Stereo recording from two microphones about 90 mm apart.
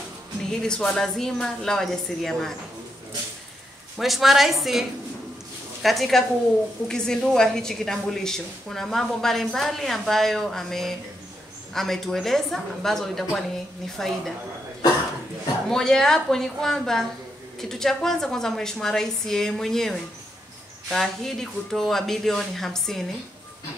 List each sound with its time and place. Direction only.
0.5 s a woman's voice: 10° left (ahead or behind)
4.0 s a woman's voice: centre (ahead or behind)
15.7 s a woman's voice: 5° left (ahead or behind)